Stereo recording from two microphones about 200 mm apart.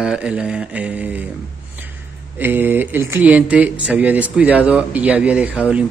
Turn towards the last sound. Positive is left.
turn(degrees=-5)  # may be behind; listen again after turning